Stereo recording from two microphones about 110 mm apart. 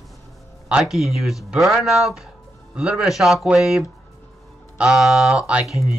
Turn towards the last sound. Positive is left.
turn(degrees=-5)  # may be behind; listen again after turning